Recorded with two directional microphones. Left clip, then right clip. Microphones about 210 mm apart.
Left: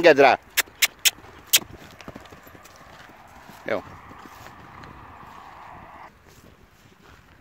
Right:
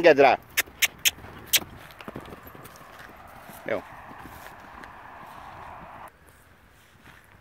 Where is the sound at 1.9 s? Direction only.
10° left (ahead or behind).